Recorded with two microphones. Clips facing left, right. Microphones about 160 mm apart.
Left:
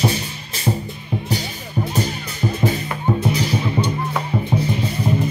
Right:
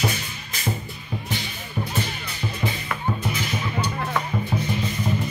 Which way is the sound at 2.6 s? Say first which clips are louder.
Left 6 dB; 40° left (ahead or behind).